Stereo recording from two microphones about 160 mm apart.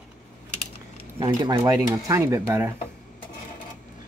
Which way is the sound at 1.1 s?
35° right (ahead or behind).